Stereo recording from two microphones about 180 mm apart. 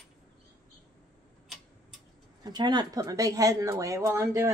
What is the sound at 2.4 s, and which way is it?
A woman's voice, 25° right (ahead or behind).